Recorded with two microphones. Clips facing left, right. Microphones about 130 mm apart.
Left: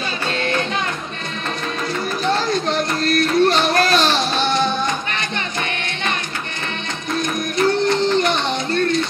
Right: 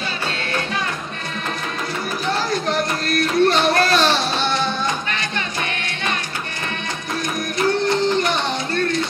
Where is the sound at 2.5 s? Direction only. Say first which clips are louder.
Left 1 dB; 20° left (ahead or behind).